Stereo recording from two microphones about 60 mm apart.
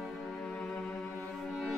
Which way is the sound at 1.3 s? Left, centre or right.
Centre.